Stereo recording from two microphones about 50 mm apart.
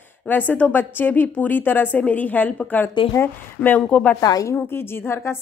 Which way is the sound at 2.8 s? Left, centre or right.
Left.